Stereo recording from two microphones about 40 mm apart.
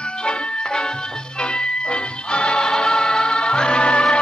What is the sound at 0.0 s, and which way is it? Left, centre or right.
Music, left.